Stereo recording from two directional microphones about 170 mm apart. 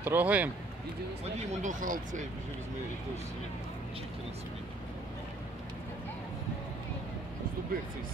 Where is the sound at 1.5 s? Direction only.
50° right (ahead or behind).